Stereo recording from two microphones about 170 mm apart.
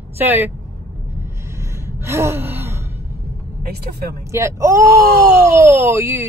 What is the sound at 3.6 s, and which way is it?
Speech, 70° right (ahead or behind).